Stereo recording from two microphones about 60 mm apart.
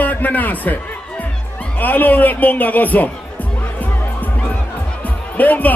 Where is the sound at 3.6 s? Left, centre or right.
Left.